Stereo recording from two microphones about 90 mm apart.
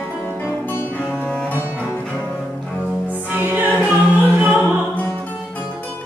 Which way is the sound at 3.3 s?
20° right (ahead or behind).